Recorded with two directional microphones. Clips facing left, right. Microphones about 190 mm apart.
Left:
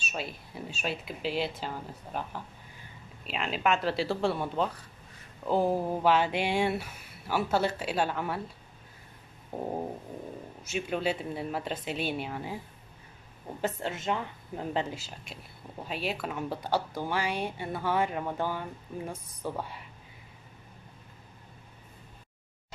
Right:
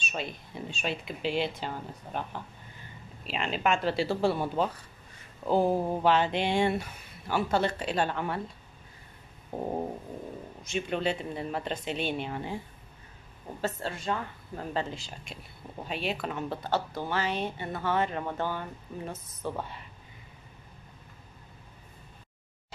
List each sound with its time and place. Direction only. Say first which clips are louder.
0.0 s speech: right 1 dB; 5° left (ahead or behind)
9.5 s speech: right 1 dB; 5° right (ahead or behind)
13.6 s speech: left 1 dB; 15° left (ahead or behind)
15.0 s speech: right 1 dB; 5° left (ahead or behind)